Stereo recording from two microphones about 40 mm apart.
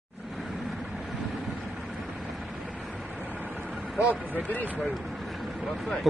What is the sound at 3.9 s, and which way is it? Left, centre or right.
Speech, right.